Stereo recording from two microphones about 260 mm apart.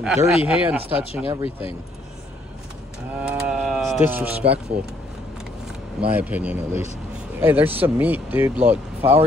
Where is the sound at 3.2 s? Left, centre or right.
Centre.